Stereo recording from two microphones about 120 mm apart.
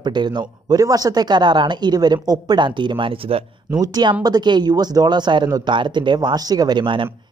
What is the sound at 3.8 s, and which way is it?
Speech, 35° right (ahead or behind).